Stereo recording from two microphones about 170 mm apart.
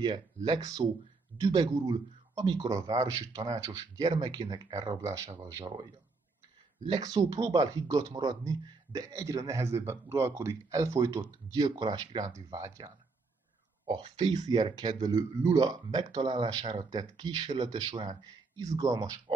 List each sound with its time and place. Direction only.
0.0 s speech: 25° right (ahead or behind)